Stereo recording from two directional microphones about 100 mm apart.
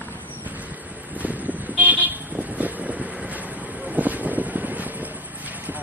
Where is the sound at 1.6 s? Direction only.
15° right (ahead or behind).